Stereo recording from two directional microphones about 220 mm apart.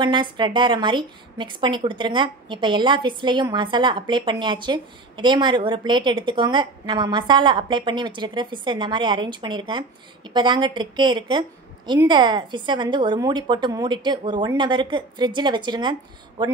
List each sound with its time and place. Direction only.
0.0 s a woman's voice: 20° right (ahead or behind)